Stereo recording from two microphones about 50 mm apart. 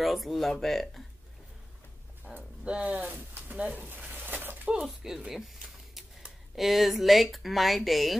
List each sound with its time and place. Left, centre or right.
0.0 s speech: centre
2.3 s speech: right
2.9 s speech: right
3.7 s a sound: right
4.8 s a sound: centre
6.5 s speech: centre